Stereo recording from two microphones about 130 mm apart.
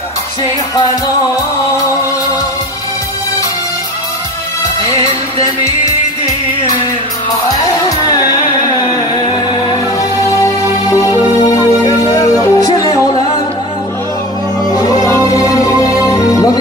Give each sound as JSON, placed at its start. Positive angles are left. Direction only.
{"t": 4.9, "sound": "music", "side_deg": 25}
{"t": 9.1, "sound": "music", "side_deg": 35}
{"t": 14.6, "sound": "music", "side_deg": 30}